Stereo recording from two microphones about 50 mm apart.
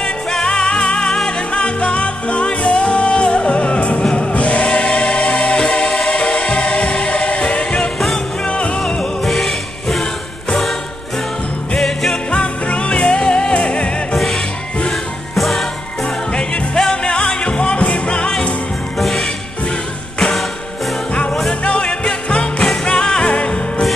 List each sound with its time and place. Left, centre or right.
0.0 s music: centre
9.2 s music: centre
11.8 s music: centre
12.3 s music: left
14.1 s music: centre
16.0 s music: centre
18.9 s music: centre
21.1 s music: left